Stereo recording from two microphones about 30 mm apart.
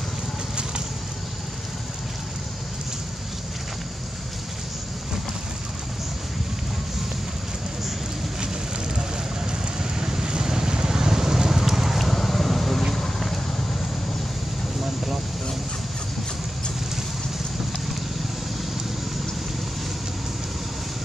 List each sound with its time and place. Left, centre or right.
9.5 s vehicle: right
12.0 s vehicle: centre